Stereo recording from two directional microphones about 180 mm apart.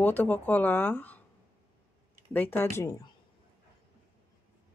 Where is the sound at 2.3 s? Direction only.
10° left (ahead or behind).